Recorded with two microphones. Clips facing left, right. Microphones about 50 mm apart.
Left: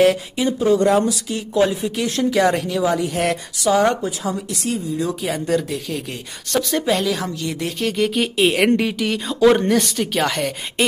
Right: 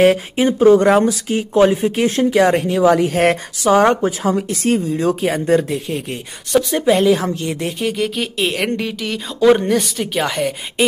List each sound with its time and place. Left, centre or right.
0.0 s speech: right
2.9 s speech: right
4.9 s speech: right
6.5 s a woman's voice: centre
7.8 s speech: centre